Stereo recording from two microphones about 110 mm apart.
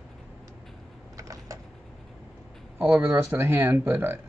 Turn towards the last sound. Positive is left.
turn(degrees=-20)  # may be behind; listen again after turning